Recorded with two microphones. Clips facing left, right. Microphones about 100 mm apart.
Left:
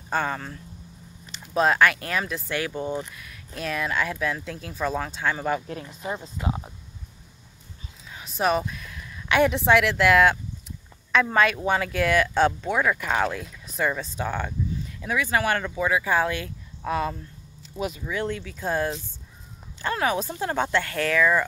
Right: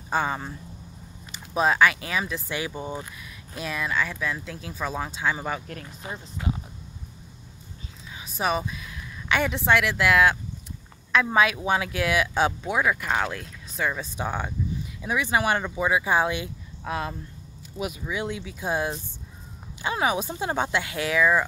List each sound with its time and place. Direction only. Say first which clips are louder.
0.1 s speech: right 1 dB; 10° right (ahead or behind)
6.0 s speech: left 6 dB; 40° left (ahead or behind)
8.1 s speech: left 3 dB; centre (ahead or behind)
14.1 s speech: left 1 dB; 15° right (ahead or behind)